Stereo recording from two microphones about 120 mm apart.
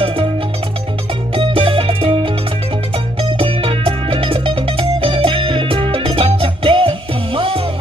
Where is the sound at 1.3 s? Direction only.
45° right (ahead or behind).